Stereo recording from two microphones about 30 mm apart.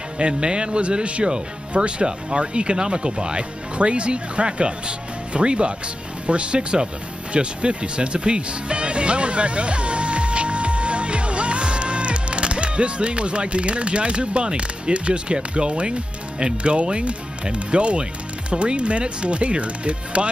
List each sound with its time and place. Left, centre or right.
0.4 s speech: right